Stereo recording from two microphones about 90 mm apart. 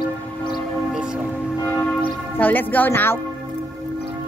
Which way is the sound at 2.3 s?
20° left (ahead or behind).